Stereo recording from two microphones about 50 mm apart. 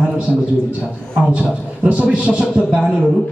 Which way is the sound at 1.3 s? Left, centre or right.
Right.